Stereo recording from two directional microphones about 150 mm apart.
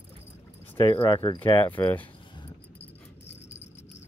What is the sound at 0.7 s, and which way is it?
Speech, 30° left (ahead or behind).